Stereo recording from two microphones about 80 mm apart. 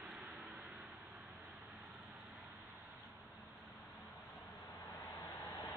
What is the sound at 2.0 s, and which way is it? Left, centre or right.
Vehicle, centre.